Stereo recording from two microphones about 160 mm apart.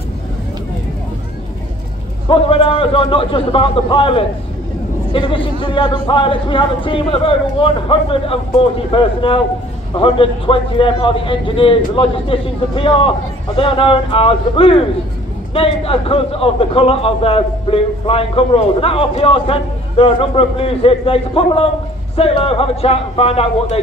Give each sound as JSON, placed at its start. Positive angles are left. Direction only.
{"t": 2.2, "sound": "a man's voice", "side_deg": 35}